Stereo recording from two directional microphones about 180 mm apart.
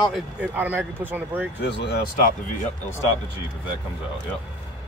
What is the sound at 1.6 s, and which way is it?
Speech, 70° left (ahead or behind).